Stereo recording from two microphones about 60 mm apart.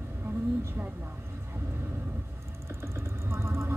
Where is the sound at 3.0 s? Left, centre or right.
Right.